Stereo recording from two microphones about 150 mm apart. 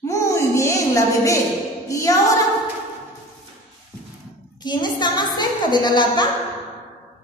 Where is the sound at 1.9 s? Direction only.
20° left (ahead or behind).